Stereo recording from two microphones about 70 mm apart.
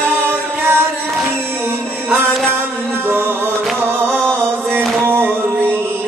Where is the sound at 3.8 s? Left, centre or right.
Right.